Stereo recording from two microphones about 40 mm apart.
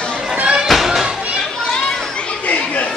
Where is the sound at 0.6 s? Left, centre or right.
Centre.